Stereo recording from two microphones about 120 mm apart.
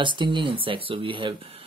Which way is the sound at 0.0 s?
40° right (ahead or behind).